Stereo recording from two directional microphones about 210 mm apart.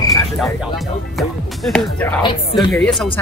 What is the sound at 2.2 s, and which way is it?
Speech, 20° left (ahead or behind).